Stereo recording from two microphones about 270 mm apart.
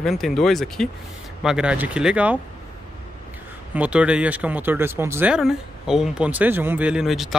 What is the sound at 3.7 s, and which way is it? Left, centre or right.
Speech, centre.